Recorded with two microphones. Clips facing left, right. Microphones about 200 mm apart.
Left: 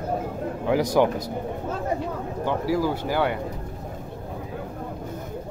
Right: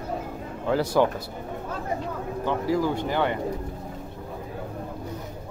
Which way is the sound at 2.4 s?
10° left (ahead or behind).